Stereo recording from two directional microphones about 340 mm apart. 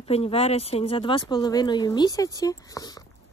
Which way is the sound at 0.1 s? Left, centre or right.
Centre.